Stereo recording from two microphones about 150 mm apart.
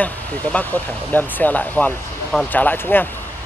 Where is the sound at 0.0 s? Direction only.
10° left (ahead or behind).